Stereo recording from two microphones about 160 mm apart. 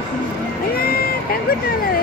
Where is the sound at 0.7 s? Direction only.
70° left (ahead or behind).